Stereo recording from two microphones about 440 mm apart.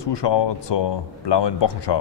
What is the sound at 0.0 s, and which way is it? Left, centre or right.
Speech, left.